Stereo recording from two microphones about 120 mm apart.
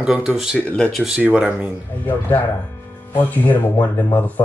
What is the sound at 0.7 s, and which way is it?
Speech, 10° left (ahead or behind).